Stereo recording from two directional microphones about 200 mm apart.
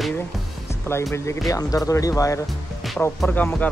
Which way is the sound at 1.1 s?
15° left (ahead or behind).